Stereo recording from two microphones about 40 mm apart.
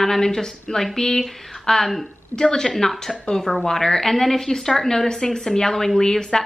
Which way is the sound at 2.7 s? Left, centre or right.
Centre.